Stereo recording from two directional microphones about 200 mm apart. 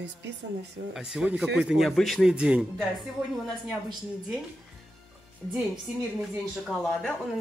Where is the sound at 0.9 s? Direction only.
5° right (ahead or behind).